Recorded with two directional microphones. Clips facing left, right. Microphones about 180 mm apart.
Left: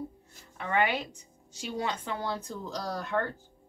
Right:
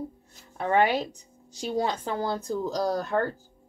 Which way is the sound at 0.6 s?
40° right (ahead or behind).